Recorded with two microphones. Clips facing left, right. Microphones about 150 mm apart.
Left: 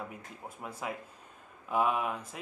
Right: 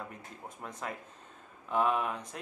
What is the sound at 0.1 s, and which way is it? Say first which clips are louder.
Speech: left 1 dB; 5° left (ahead or behind).